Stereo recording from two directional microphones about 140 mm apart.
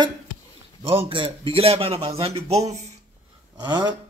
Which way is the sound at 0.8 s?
40° right (ahead or behind).